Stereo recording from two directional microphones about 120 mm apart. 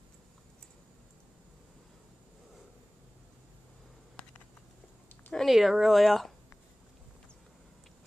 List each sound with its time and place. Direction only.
5.3 s speech: centre (ahead or behind)